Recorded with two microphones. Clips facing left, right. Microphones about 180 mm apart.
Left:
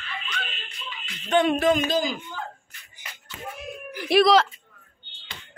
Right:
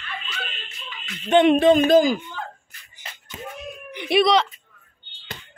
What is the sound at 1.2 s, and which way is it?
Speech, 20° right (ahead or behind).